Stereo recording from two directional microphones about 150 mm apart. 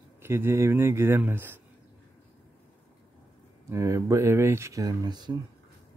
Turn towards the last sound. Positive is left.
turn(degrees=-30)  # may be behind; listen again after turning